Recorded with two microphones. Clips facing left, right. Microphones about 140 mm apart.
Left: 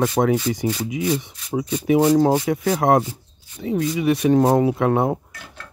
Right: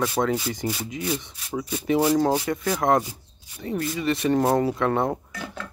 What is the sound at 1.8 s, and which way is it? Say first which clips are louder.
Speech: left 5 dB; 15° left (ahead or behind).